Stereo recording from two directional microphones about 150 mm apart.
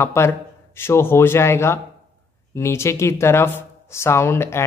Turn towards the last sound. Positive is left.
turn(degrees=15)  # may be behind; listen again after turning